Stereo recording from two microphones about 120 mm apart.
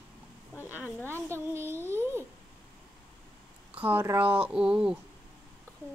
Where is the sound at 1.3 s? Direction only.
20° right (ahead or behind).